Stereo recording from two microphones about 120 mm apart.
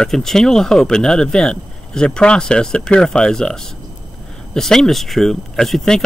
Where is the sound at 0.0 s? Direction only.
5° left (ahead or behind).